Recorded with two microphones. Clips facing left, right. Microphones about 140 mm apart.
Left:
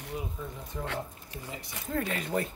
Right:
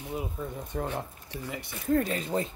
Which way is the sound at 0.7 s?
70° right (ahead or behind).